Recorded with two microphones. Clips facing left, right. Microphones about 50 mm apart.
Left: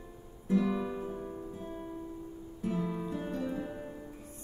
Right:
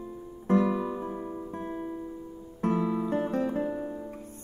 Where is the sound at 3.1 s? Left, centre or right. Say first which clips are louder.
Right 8 dB; right.